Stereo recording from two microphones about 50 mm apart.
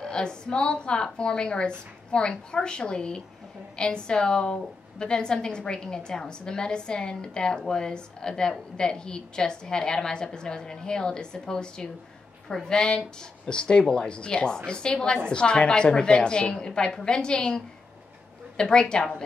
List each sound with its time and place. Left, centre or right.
0.0 s a woman's voice: centre
18.6 s a woman's voice: centre